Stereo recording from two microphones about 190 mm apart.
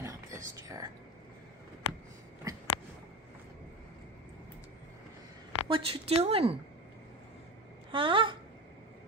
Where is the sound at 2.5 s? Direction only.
20° right (ahead or behind).